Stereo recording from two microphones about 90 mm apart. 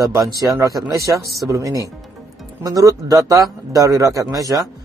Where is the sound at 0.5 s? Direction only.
40° right (ahead or behind).